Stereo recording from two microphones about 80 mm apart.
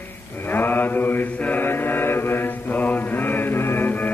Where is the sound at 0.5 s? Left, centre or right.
Left.